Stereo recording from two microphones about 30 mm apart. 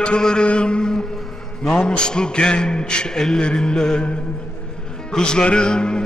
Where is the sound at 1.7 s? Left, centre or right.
Left.